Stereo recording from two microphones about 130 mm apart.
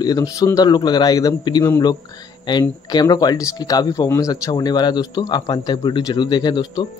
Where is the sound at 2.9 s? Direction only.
30° left (ahead or behind).